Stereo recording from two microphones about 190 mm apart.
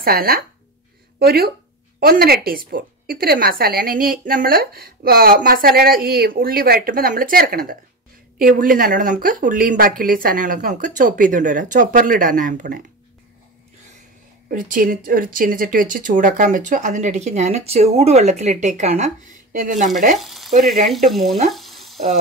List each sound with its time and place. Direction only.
0.0 s a woman's voice: 50° right (ahead or behind)
14.5 s a woman's voice: 45° right (ahead or behind)
20.2 s frying: centre (ahead or behind)
20.9 s speech: centre (ahead or behind)
21.5 s frying: centre (ahead or behind)